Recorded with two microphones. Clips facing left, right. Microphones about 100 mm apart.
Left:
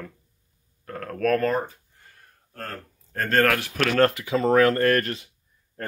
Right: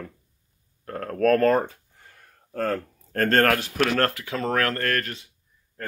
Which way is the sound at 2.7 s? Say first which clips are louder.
Right 6 dB; 60° right (ahead or behind).